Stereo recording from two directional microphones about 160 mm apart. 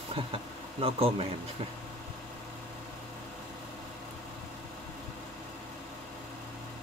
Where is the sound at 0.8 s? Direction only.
35° right (ahead or behind).